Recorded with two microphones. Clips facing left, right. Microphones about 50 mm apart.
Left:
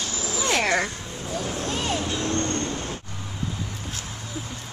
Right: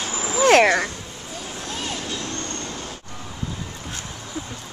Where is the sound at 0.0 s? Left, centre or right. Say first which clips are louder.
Right 7 dB; right.